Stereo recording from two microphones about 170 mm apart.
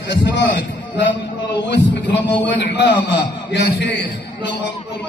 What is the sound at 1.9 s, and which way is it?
A man's voice, 90° left.